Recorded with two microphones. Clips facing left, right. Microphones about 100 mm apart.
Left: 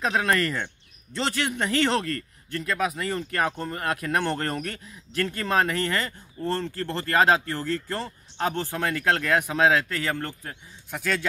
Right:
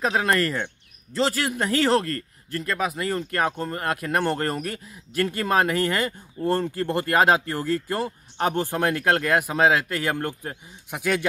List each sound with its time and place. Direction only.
0.0 s speech: centre (ahead or behind)